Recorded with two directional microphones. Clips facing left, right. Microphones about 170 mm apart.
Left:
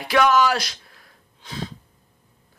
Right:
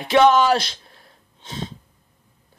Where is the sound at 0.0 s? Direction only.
25° right (ahead or behind).